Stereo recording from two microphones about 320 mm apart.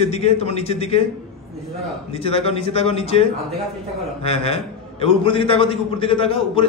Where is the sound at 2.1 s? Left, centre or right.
Centre.